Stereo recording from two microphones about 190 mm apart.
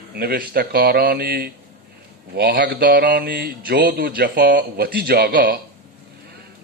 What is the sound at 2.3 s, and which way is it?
Mantra, 55° right (ahead or behind).